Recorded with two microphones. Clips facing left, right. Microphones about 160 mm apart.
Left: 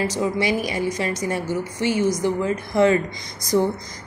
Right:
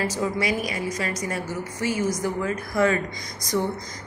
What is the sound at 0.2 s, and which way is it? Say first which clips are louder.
A woman's voice: left 4 dB; 25° left (ahead or behind).